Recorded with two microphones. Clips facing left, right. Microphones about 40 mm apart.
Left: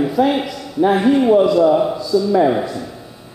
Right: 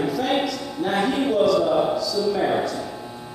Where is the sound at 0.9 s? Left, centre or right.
Centre.